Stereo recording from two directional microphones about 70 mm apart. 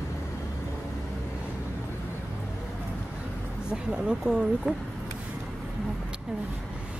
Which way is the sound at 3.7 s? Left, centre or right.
Centre.